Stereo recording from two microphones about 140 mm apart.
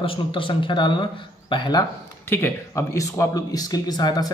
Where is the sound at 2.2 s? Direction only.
15° left (ahead or behind).